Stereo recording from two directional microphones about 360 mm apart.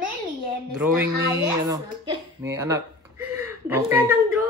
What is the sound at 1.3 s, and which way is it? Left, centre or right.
Speech, centre.